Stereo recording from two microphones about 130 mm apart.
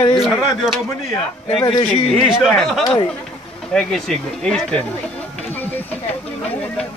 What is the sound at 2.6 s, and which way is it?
Speech, 5° left (ahead or behind).